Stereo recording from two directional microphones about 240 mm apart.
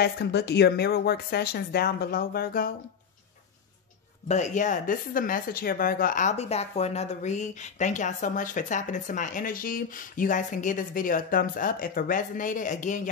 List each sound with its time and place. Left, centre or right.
0.0 s speech: left
4.3 s speech: left